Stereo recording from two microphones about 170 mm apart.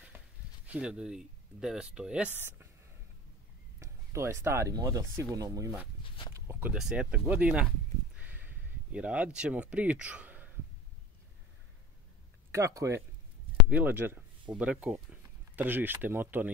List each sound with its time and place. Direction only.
0.7 s speech: 5° right (ahead or behind)
3.8 s speech: 15° right (ahead or behind)
8.2 s a sound: 10° right (ahead or behind)
12.4 s speech: 15° right (ahead or behind)